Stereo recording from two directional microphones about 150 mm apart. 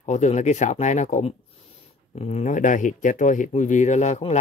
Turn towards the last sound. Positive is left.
turn(degrees=50)  # may be behind; listen again after turning